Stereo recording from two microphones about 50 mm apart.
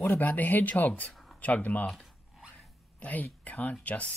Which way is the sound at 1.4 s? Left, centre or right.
Left.